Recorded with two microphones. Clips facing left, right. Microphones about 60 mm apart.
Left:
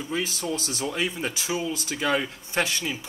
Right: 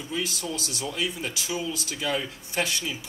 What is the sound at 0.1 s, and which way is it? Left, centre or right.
Speech, left.